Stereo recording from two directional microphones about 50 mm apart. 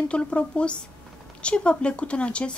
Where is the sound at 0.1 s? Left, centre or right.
Left.